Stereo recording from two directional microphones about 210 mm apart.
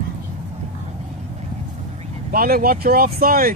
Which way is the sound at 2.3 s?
45° right (ahead or behind).